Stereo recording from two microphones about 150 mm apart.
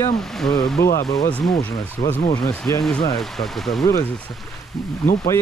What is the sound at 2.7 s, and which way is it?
Speech, 15° left (ahead or behind).